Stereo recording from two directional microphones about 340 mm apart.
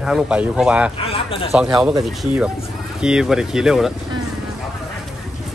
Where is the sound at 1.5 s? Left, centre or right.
Centre.